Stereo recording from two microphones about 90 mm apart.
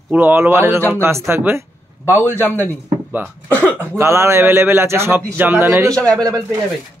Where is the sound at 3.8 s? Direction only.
30° right (ahead or behind).